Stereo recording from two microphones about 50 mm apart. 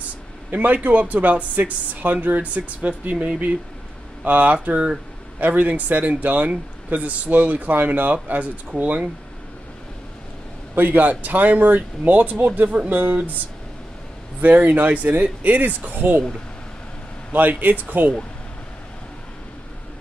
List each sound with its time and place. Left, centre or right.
0.5 s speech: right
10.7 s speech: right
14.4 s speech: right
17.3 s speech: right